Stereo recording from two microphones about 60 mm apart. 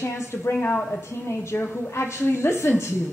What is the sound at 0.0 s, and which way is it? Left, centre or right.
Speech, left.